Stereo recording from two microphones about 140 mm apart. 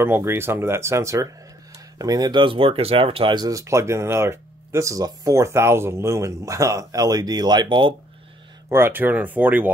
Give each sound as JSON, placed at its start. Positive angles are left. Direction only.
{"t": 0.0, "sound": "speech", "side_deg": -15}
{"t": 3.3, "sound": "speech", "side_deg": -25}
{"t": 8.6, "sound": "speech", "side_deg": -15}